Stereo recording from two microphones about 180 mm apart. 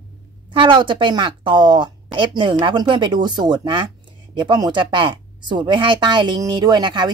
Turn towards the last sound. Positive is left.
turn(degrees=-25)  # may be behind; listen again after turning